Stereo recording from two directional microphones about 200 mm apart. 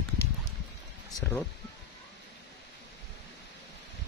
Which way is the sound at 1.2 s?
10° left (ahead or behind).